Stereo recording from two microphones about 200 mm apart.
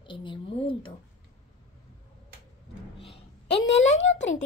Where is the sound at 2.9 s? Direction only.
30° left (ahead or behind).